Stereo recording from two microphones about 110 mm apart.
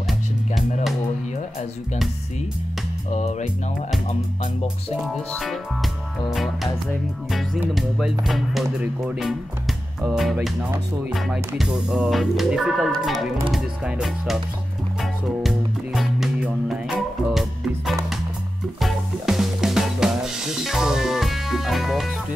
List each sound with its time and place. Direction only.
3.1 s music: 90° left
6.3 s music: centre (ahead or behind)